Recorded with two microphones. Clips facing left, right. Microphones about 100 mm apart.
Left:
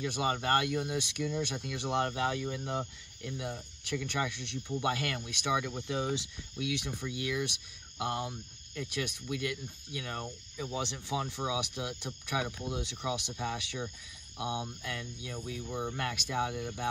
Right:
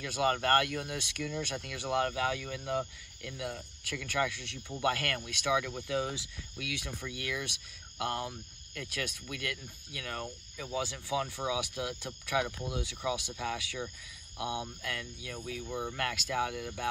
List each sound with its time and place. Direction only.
0.0 s speech: 20° left (ahead or behind)